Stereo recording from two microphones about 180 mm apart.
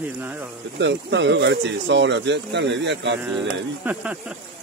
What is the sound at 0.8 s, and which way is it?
Speech, 80° right.